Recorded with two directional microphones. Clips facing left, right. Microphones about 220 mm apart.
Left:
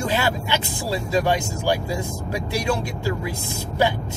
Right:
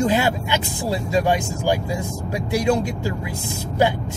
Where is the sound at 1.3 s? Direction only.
15° right (ahead or behind).